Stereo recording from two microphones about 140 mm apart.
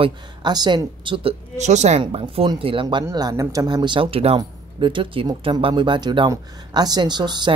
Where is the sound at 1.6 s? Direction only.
55° right (ahead or behind); by 3.1 s 35° right (ahead or behind).